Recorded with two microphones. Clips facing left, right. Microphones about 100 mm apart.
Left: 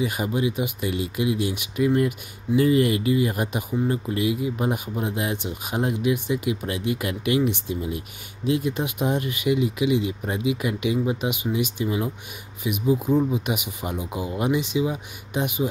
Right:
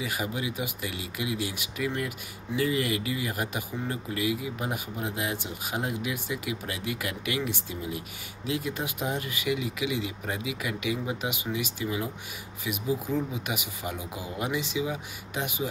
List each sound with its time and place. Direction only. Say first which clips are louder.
0.0 s speech: left 7 dB; 25° left (ahead or behind)